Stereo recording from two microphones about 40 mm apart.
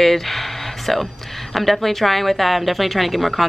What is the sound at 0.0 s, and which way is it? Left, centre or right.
Speech, centre.